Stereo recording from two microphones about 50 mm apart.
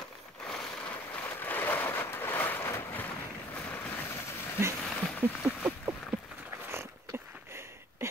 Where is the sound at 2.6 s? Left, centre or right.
Left.